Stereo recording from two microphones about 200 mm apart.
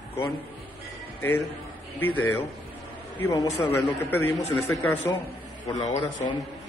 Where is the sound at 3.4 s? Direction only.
30° left (ahead or behind).